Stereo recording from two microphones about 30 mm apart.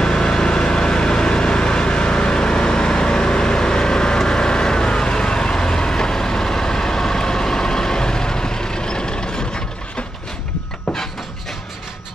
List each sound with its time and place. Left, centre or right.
0.0 s vehicle: left